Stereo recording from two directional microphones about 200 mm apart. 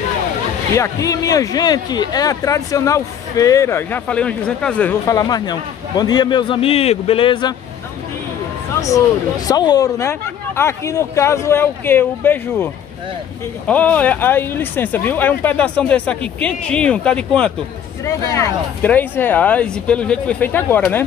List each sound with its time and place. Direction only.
0.7 s speech: 15° left (ahead or behind)
9.5 s speech: 20° left (ahead or behind)
13.7 s speech: 5° left (ahead or behind)